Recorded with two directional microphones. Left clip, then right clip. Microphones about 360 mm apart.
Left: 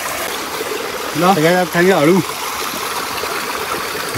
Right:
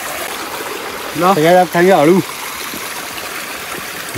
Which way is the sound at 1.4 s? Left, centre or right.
Right.